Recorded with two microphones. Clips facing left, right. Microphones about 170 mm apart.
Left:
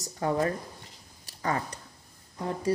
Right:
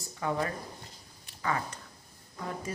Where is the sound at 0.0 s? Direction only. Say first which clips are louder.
Left 5 dB; 40° left (ahead or behind).